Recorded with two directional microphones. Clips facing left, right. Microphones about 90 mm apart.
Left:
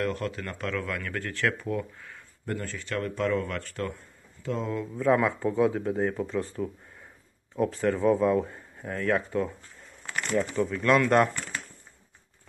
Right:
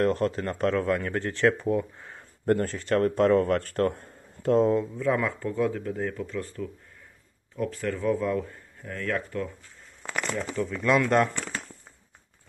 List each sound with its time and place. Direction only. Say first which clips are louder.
0.0 s speech: right 6 dB; 35° right (ahead or behind)
2.4 s speech: right 9 dB; 45° right (ahead or behind)
4.9 s speech: left 3 dB; 5° left (ahead or behind)
5.4 s speech: left 3 dB; 20° left (ahead or behind)
10.5 s speech: left 2 dB; 5° left (ahead or behind)
10.8 s speech: even; 5° right (ahead or behind)